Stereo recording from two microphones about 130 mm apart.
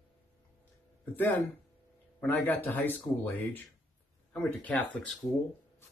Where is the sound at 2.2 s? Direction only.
15° left (ahead or behind).